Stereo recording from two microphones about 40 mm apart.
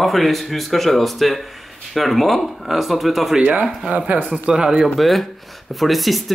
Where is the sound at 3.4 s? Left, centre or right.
Right.